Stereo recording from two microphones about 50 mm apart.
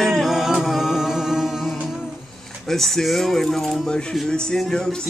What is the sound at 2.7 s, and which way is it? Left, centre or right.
Speech, centre.